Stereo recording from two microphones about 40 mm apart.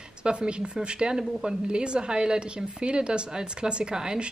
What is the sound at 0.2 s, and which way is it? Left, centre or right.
A woman's voice, right.